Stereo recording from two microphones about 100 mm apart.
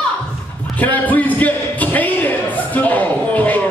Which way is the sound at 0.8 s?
15° left (ahead or behind).